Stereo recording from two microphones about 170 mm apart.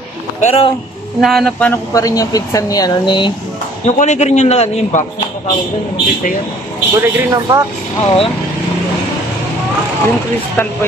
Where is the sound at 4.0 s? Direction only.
40° left (ahead or behind).